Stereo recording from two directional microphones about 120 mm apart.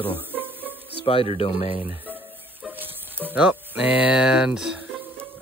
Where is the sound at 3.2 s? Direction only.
15° right (ahead or behind).